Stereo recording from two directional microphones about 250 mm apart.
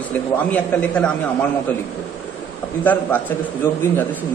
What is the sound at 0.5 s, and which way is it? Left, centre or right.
Speech, centre.